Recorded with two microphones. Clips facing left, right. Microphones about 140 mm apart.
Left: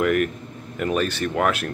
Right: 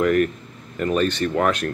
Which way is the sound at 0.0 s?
5° left (ahead or behind).